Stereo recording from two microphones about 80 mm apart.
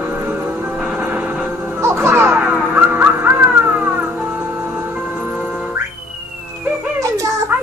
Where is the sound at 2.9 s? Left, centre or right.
Right.